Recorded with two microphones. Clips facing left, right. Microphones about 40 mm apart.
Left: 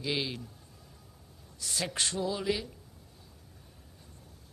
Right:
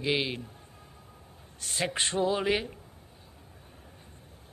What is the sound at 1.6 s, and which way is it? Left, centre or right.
A man's voice, right.